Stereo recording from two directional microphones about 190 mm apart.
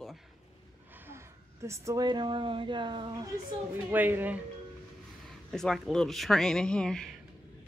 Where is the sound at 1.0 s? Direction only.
15° right (ahead or behind).